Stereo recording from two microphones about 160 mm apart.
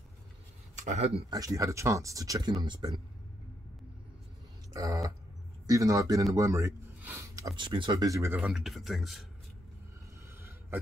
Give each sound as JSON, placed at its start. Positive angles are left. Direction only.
{"t": 0.8, "sound": "speech", "side_deg": -40}
{"t": 1.3, "sound": "speech", "side_deg": -20}
{"t": 4.7, "sound": "speech", "side_deg": -20}
{"t": 8.4, "sound": "speech", "side_deg": 0}